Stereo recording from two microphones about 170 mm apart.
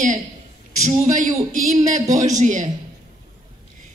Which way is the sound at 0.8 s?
45° right (ahead or behind).